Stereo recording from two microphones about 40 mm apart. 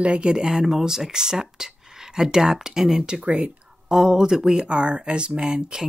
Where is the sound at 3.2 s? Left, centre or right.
Right.